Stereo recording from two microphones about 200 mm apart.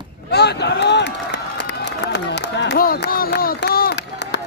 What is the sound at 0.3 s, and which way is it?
Run, 55° left (ahead or behind).